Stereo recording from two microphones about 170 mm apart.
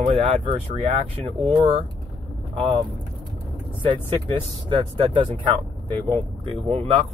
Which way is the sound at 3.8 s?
30° right (ahead or behind).